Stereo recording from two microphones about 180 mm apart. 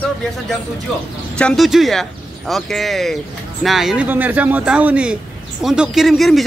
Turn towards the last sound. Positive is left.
turn(degrees=0)  # may be behind; listen again after turning